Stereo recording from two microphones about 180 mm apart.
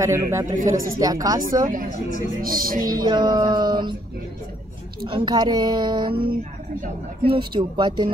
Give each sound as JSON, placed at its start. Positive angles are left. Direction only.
{"t": 0.0, "sound": "a man's voice", "side_deg": -15}
{"t": 2.4, "sound": "speech", "side_deg": -55}
{"t": 3.0, "sound": "a woman's voice", "side_deg": -25}
{"t": 5.0, "sound": "a woman's voice", "side_deg": -25}
{"t": 6.3, "sound": "speech", "side_deg": -55}
{"t": 7.2, "sound": "a woman's voice", "side_deg": -25}